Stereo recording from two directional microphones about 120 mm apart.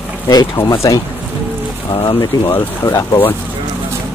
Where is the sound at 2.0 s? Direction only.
35° left (ahead or behind).